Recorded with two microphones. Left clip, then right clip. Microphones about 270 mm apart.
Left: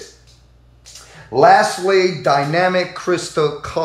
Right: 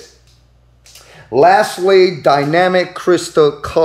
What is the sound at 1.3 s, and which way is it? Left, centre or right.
Speech, right.